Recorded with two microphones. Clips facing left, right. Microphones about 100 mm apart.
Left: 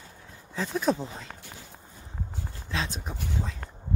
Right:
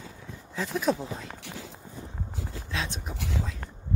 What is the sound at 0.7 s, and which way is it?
Speech, centre (ahead or behind).